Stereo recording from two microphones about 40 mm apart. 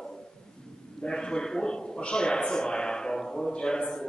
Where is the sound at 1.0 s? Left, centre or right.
Centre.